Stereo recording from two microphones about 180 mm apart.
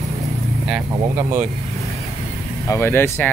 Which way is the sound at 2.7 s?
15° left (ahead or behind).